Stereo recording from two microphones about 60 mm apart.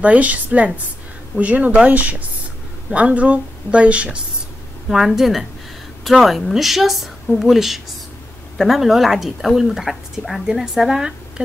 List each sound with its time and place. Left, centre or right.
0.0 s speech: right
4.8 s a woman's voice: centre